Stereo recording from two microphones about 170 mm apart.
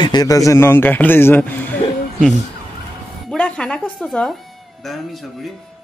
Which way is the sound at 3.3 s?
5° left (ahead or behind).